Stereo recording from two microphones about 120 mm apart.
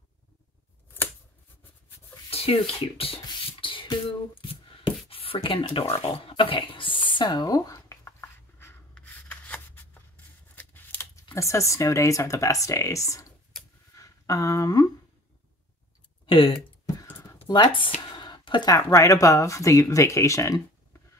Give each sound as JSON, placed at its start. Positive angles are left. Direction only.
{"t": 2.3, "sound": "speech", "side_deg": 55}
{"t": 3.6, "sound": "beatboxing", "side_deg": 45}
{"t": 5.1, "sound": "speech", "side_deg": 50}
{"t": 8.9, "sound": "rub", "side_deg": 10}
{"t": 10.5, "sound": "scissors", "side_deg": 15}
{"t": 11.3, "sound": "speech", "side_deg": 25}
{"t": 13.9, "sound": "a sound", "side_deg": 25}
{"t": 16.3, "sound": "speech", "side_deg": 45}